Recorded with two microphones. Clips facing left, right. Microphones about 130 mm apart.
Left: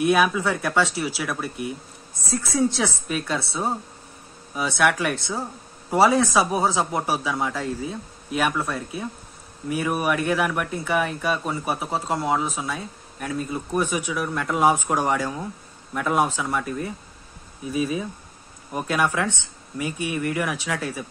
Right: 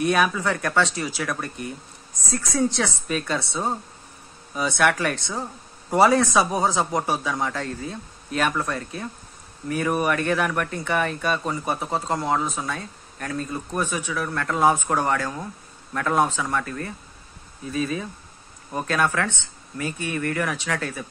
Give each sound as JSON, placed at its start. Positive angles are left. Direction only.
{"t": 0.0, "sound": "a man's voice", "side_deg": 5}